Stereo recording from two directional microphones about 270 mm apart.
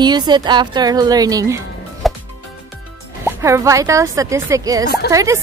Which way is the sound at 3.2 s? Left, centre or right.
Centre.